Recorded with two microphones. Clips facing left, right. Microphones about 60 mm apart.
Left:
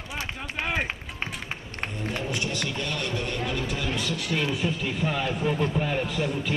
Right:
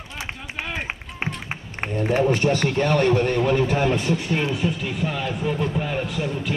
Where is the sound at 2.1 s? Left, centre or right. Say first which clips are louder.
Right 11 dB; right.